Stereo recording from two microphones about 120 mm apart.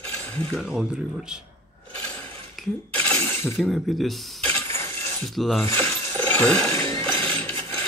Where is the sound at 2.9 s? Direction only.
15° left (ahead or behind).